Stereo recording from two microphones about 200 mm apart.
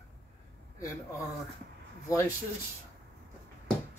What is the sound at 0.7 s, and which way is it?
Speech, 15° left (ahead or behind).